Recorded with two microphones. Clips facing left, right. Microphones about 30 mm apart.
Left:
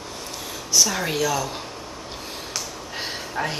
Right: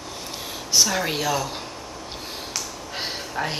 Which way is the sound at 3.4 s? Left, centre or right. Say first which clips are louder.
Left 1 dB; centre.